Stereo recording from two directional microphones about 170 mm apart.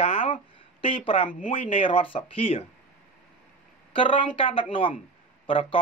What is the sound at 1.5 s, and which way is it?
Speech, 30° left (ahead or behind).